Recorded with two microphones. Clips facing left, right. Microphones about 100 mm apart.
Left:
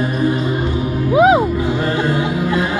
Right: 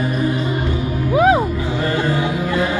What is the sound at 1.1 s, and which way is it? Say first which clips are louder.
Music: left 3 dB; 20° left (ahead or behind).